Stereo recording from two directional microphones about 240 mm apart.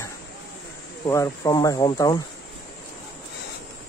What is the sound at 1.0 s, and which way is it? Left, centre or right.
Speech, centre.